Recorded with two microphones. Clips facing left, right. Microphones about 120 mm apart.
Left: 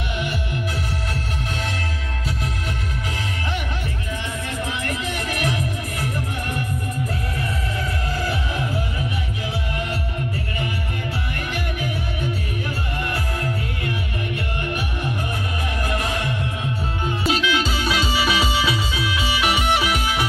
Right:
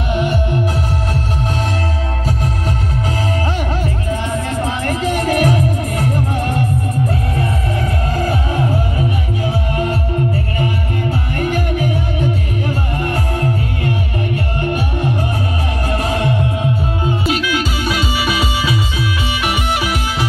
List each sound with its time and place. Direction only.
0.1 s music: 40° right (ahead or behind)
4.1 s music: 40° right (ahead or behind)
8.1 s music: 50° right (ahead or behind)
11.3 s music: 40° right (ahead or behind)
17.2 s music: 5° right (ahead or behind)